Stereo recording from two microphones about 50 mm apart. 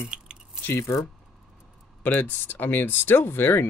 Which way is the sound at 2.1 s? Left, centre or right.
Left.